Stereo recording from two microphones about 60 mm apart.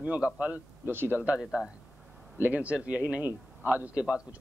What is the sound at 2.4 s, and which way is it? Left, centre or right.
A man's voice, right.